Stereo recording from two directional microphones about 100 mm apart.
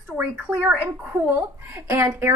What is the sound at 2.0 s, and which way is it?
Speech, 25° right (ahead or behind).